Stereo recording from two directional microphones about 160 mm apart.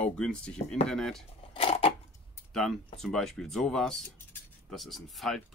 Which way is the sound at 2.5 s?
Centre (ahead or behind).